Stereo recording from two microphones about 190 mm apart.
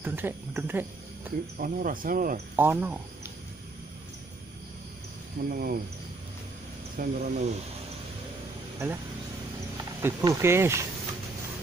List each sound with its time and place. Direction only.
0.0 s speech: 10° right (ahead or behind)
1.6 s speech: 45° right (ahead or behind)
2.5 s speech: 10° right (ahead or behind)
5.5 s speech: 50° right (ahead or behind)
7.0 s speech: 45° right (ahead or behind)
10.0 s speech: 15° right (ahead or behind)